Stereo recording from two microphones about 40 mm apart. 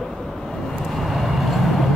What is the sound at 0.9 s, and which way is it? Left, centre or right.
Vehicle, centre.